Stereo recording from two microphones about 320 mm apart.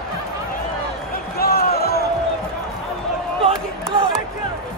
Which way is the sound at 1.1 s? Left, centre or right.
Left.